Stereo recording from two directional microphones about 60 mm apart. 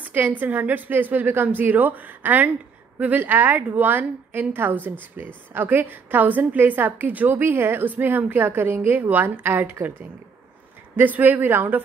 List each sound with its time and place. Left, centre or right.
0.1 s a woman's voice: right